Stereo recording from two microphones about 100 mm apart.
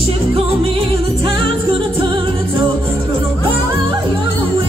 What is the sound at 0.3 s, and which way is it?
Music, 65° right (ahead or behind).